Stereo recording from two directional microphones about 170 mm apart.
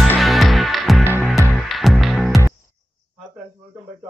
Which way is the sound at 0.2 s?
Centre (ahead or behind).